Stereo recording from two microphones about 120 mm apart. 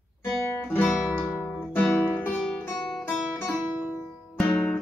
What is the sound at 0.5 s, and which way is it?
Guitar, 15° left (ahead or behind).